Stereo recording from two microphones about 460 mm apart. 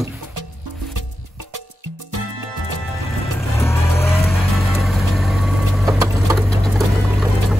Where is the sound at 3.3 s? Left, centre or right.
Centre.